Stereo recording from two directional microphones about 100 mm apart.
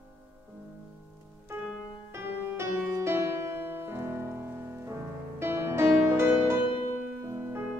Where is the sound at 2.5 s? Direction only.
25° right (ahead or behind).